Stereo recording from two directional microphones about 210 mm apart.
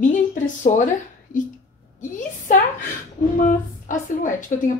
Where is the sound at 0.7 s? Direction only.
35° left (ahead or behind).